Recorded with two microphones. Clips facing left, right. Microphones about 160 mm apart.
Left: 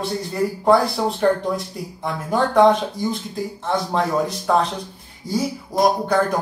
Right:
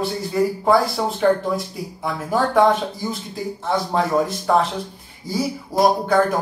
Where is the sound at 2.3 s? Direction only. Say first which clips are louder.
Left 2 dB; centre (ahead or behind).